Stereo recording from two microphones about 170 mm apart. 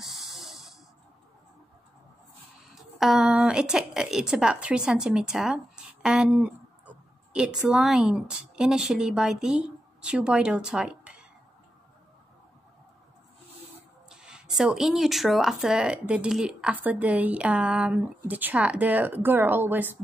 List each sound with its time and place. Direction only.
0.0 s a sound: centre (ahead or behind)
2.7 s speech: centre (ahead or behind)
14.0 s speech: 5° right (ahead or behind)